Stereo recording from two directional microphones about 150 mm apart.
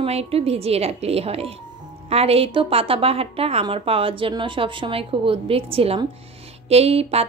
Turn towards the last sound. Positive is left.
turn(degrees=-40)  # may be behind; listen again after turning